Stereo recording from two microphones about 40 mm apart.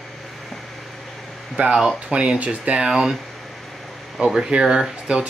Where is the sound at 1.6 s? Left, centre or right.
Right.